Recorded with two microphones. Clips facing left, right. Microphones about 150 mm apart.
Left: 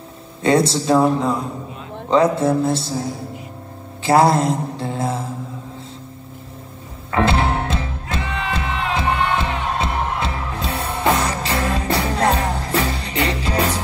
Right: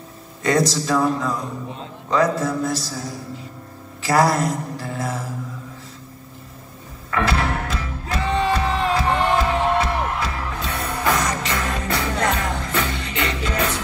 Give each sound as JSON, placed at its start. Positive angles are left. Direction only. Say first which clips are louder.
{"t": 0.4, "sound": "mantra", "louder": "left 3 dB", "side_deg": 30}
{"t": 4.0, "sound": "mantra", "louder": "left 4 dB", "side_deg": 25}
{"t": 7.1, "sound": "music", "louder": "left 4 dB", "side_deg": 25}
{"t": 8.2, "sound": "music", "louder": "right 6 dB", "side_deg": -35}
{"t": 9.4, "sound": "music", "louder": "right 3 dB", "side_deg": 25}